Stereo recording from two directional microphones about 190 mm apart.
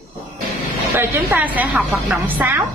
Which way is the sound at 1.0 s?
10° right (ahead or behind).